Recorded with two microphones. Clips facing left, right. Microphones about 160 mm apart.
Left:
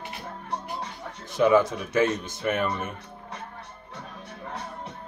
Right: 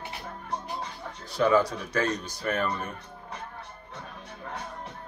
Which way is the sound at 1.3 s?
20° left (ahead or behind).